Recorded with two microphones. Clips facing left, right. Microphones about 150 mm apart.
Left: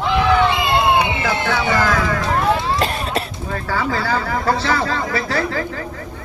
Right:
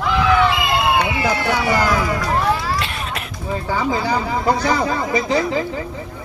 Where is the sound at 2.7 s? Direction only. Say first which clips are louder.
Left 5 dB; 40° left (ahead or behind).